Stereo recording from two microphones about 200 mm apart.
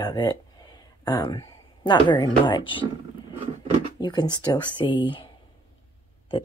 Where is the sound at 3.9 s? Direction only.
20° left (ahead or behind).